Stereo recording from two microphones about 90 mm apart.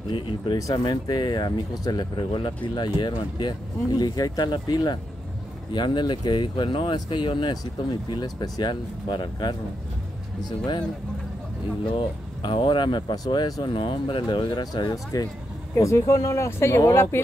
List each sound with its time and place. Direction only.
0.6 s speech: 40° left (ahead or behind)
12.4 s speech: 65° left (ahead or behind); by 13.7 s 50° left (ahead or behind)
13.7 s speech: 75° left (ahead or behind); by 15.2 s 50° left (ahead or behind)
15.8 s speech: 35° left (ahead or behind)